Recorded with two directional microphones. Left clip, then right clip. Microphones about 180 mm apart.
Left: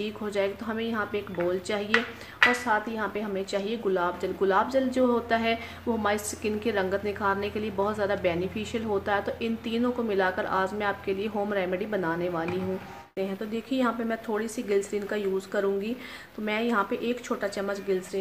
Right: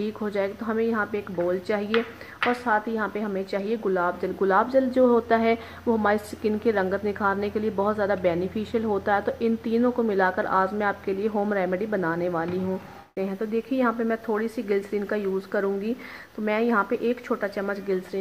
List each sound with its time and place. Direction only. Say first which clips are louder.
0.0 s a woman's voice: right 2 dB; 25° right (ahead or behind)